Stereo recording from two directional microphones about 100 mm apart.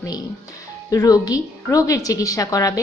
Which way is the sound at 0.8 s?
35° left (ahead or behind).